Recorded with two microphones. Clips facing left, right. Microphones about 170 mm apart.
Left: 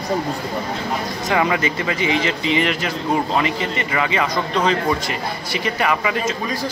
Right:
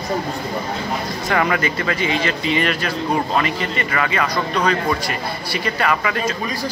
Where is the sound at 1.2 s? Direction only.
20° left (ahead or behind).